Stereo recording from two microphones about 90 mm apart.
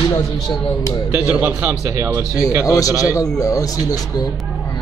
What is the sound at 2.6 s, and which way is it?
A man's voice, 40° left (ahead or behind).